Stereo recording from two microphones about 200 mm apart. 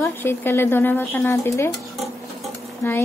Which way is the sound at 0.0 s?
10° left (ahead or behind).